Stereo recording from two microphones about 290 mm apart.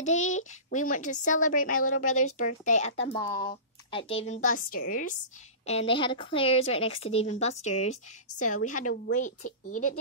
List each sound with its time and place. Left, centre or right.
0.0 s speech: left
3.1 s speech: centre
4.3 s speech: left